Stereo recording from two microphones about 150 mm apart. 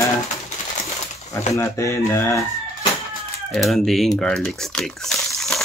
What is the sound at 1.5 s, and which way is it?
Speech, 20° left (ahead or behind).